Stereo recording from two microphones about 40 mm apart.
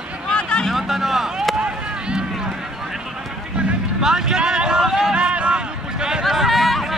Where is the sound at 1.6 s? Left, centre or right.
Right.